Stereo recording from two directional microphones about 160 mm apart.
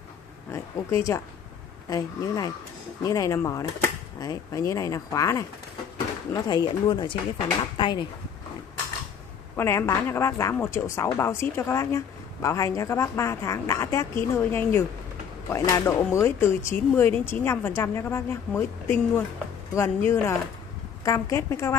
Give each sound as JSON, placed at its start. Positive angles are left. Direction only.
{"t": 0.5, "sound": "speech", "side_deg": 20}
{"t": 9.6, "sound": "speech", "side_deg": 15}